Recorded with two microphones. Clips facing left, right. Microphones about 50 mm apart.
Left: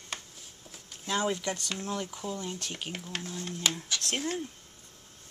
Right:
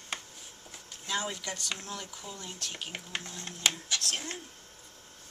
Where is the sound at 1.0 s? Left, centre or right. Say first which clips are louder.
Left 5 dB; centre.